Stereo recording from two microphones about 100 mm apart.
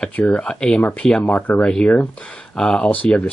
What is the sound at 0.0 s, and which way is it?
Speech, 10° left (ahead or behind).